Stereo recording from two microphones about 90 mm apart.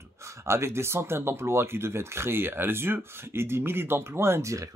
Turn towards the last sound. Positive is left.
turn(degrees=-30)  # may be behind; listen again after turning